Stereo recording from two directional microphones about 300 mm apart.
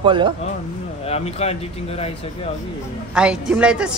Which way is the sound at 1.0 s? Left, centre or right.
Left.